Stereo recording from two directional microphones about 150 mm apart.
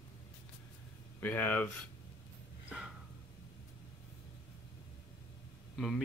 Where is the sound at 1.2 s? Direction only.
10° left (ahead or behind).